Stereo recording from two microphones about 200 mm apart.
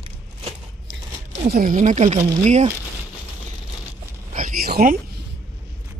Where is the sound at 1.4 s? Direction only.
50° right (ahead or behind).